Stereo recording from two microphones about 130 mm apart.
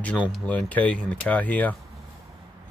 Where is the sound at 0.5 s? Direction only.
10° left (ahead or behind).